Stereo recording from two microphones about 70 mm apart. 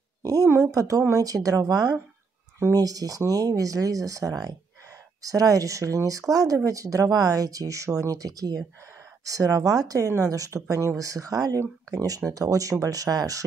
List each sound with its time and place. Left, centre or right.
0.2 s speech: right